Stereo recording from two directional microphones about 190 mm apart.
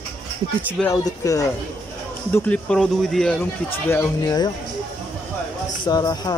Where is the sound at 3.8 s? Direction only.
15° left (ahead or behind).